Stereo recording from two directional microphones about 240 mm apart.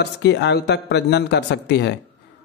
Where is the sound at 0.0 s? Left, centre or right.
Left.